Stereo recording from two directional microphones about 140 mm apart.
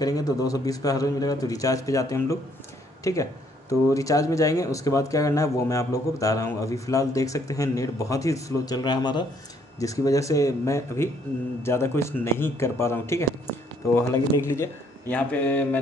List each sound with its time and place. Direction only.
0.0 s speech: 25° left (ahead or behind)